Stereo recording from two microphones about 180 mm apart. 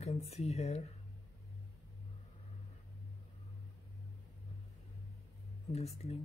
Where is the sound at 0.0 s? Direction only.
35° left (ahead or behind).